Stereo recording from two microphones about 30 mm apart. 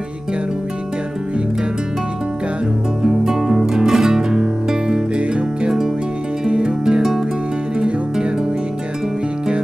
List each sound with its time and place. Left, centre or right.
3.0 s music: centre
7.0 s music: centre